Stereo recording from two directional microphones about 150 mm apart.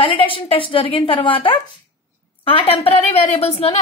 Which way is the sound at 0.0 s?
35° left (ahead or behind).